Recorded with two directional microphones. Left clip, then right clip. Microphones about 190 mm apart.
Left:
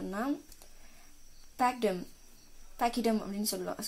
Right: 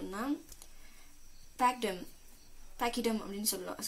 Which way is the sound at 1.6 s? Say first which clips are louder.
Left 1 dB; 45° left (ahead or behind).